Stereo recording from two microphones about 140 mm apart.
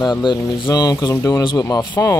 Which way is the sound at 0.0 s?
30° left (ahead or behind).